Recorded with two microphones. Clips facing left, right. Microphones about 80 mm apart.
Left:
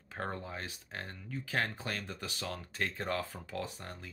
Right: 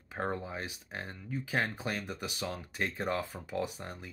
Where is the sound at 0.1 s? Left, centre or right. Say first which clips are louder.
Right 4 dB; centre.